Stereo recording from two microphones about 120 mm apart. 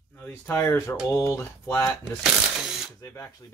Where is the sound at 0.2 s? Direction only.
20° left (ahead or behind).